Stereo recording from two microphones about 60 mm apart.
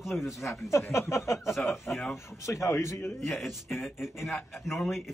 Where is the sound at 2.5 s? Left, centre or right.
Left.